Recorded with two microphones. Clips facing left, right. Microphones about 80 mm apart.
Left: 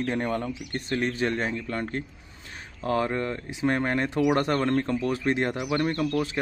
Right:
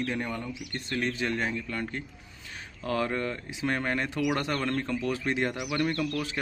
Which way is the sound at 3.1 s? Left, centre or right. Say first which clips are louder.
Left 2 dB; left.